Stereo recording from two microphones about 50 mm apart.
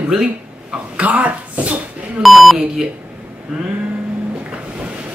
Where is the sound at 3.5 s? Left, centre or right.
Centre.